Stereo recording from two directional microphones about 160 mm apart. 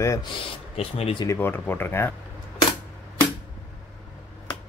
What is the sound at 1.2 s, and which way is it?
Speech, 15° left (ahead or behind).